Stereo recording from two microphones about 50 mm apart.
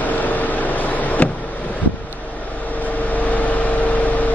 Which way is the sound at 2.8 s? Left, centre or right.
Left.